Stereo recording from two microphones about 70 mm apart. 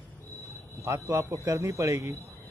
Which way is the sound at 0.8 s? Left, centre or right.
Right.